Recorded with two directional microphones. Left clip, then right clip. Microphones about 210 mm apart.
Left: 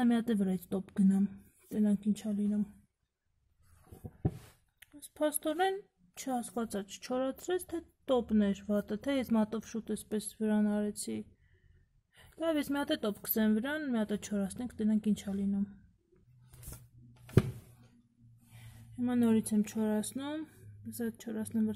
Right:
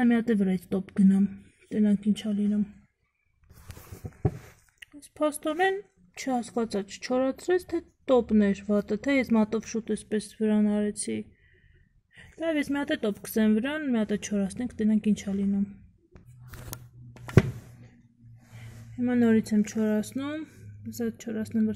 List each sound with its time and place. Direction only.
0.0 s a woman's voice: 5° left (ahead or behind)
4.9 s a woman's voice: centre (ahead or behind)
12.2 s a sound: 5° left (ahead or behind)
12.7 s a woman's voice: 5° left (ahead or behind)
18.9 s speech: 10° left (ahead or behind)